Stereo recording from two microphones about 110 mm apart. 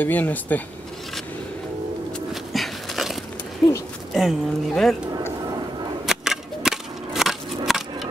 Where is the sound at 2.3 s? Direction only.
Centre (ahead or behind).